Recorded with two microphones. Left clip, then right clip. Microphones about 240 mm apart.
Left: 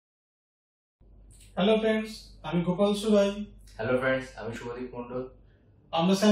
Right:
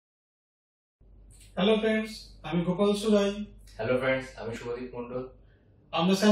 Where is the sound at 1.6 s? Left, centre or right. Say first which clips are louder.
Left 1 dB; centre.